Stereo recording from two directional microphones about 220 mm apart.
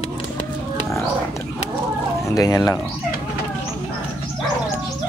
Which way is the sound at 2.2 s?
15° left (ahead or behind).